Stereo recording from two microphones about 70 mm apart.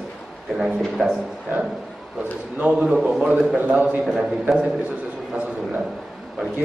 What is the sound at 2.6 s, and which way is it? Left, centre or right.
Speech, centre.